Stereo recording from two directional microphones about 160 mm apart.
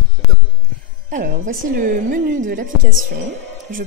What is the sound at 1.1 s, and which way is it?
A woman's voice, 55° right (ahead or behind).